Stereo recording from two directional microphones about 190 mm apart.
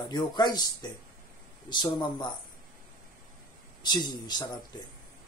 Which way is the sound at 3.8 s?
20° left (ahead or behind).